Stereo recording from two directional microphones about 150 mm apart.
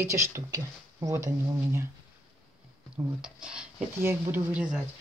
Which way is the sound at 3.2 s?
5° right (ahead or behind).